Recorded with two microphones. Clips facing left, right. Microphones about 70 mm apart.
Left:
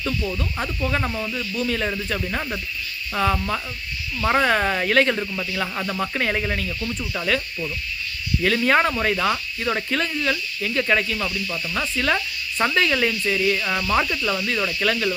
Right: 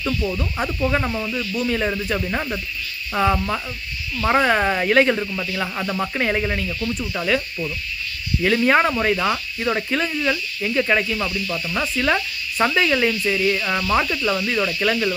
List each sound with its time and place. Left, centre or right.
0.0 s speech: centre